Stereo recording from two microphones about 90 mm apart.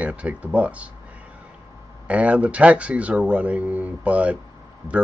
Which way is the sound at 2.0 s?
15° right (ahead or behind).